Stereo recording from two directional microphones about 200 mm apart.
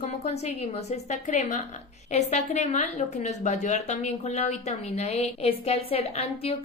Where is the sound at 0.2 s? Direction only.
35° left (ahead or behind).